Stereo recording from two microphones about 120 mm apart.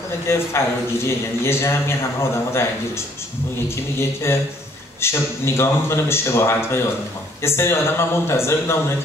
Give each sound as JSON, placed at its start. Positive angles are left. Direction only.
{"t": 0.3, "sound": "speech", "side_deg": 20}
{"t": 3.6, "sound": "speech", "side_deg": 20}